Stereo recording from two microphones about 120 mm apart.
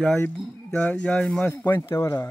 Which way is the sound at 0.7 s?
10° left (ahead or behind).